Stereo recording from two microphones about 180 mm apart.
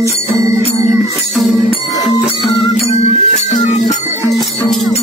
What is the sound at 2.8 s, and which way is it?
Music, 35° left (ahead or behind).